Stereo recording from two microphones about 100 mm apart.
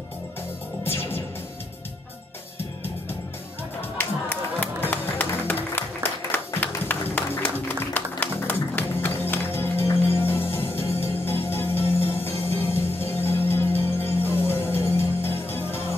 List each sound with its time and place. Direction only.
4.0 s music: 15° left (ahead or behind)